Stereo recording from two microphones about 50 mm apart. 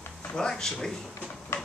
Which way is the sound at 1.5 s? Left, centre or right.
Left.